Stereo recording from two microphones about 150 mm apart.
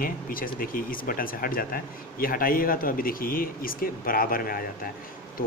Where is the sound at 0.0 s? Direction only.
70° left (ahead or behind).